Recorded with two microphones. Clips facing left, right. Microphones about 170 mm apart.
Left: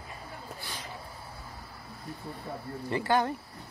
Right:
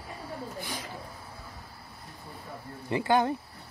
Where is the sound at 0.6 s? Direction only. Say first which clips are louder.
Right 5 dB; 15° right (ahead or behind).